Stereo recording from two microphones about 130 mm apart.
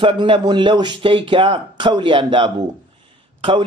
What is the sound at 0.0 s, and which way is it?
A man's voice, 40° right (ahead or behind).